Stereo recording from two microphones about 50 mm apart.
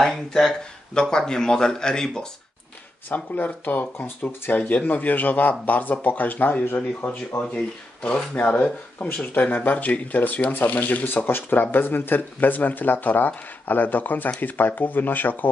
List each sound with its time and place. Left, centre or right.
0.0 s speech: centre
3.1 s speech: left
7.5 s speech: left
8.4 s speech: left
11.2 s speech: left